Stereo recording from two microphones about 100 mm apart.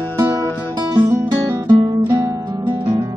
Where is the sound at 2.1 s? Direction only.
40° right (ahead or behind).